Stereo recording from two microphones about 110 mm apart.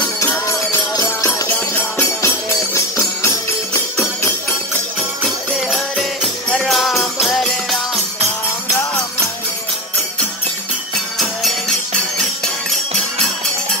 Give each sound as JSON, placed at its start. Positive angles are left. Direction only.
{"t": 0.0, "sound": "music", "side_deg": 25}
{"t": 1.5, "sound": "music", "side_deg": 20}
{"t": 5.7, "sound": "music", "side_deg": 0}